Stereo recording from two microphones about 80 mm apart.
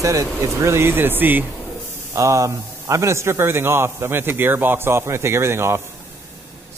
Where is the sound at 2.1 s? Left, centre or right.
Right.